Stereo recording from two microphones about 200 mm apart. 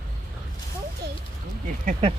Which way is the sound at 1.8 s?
35° right (ahead or behind).